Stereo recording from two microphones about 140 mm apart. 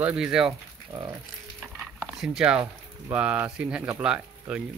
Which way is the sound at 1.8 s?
5° right (ahead or behind).